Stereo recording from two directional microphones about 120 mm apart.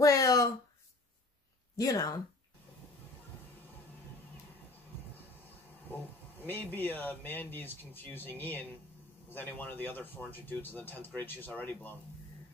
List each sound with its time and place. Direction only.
0.0 s a sound: 30° left (ahead or behind)
1.8 s speech: 30° left (ahead or behind)
6.4 s speech: 15° left (ahead or behind)